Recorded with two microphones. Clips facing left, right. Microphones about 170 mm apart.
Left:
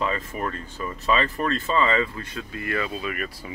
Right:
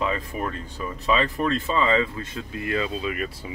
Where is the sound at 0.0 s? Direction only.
15° right (ahead or behind).